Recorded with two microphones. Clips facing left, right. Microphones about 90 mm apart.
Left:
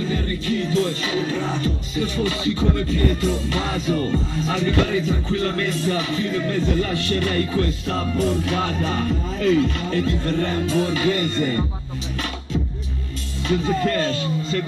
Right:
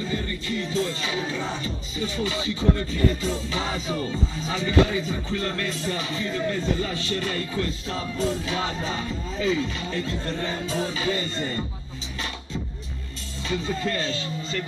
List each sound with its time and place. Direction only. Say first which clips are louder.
0.1 s music: left 5 dB; 60° left (ahead or behind)
13.5 s speech: left 6 dB; 60° left (ahead or behind)